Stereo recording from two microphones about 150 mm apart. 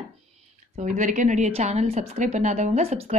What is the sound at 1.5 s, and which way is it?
Speech, 45° right (ahead or behind).